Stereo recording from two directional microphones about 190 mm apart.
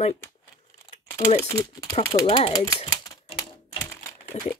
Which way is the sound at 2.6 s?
20° left (ahead or behind).